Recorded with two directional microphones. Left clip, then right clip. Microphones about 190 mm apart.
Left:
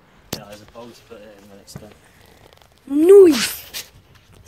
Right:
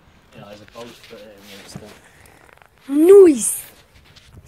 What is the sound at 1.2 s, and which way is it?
Speech, 40° right (ahead or behind).